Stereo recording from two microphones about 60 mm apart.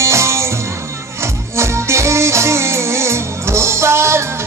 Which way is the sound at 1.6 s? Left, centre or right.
Right.